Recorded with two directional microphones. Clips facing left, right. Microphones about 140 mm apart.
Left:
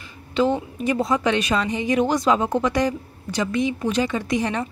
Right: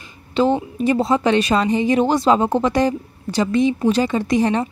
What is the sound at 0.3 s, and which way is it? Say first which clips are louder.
A woman's voice: right 3 dB; 30° right (ahead or behind).